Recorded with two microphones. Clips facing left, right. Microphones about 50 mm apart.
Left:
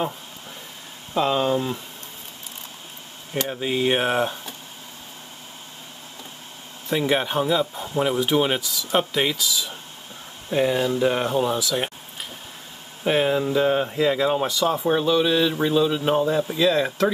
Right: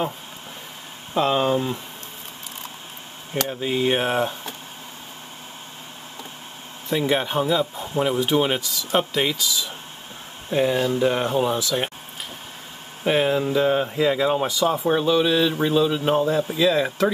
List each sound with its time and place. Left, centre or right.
1.1 s speech: centre
3.4 s speech: centre
6.9 s speech: centre
13.0 s speech: centre